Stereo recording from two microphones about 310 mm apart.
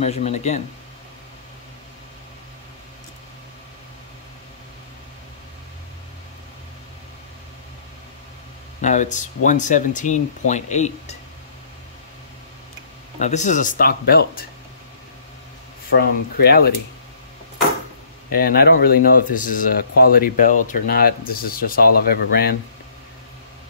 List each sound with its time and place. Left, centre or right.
0.0 s speech: left
8.8 s speech: left
13.2 s speech: left
15.9 s speech: left
18.3 s speech: left